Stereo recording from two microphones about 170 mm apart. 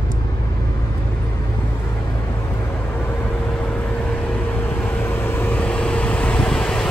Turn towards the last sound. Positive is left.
turn(degrees=5)  # may be behind; listen again after turning